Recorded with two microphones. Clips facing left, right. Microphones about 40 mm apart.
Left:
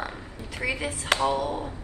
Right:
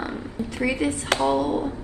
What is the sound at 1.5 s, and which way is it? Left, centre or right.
Mantra, centre.